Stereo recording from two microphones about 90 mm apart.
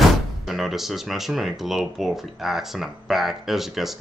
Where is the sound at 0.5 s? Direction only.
Centre (ahead or behind).